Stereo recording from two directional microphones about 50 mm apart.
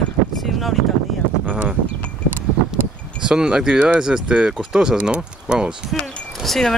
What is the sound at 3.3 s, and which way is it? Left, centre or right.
Speech, centre.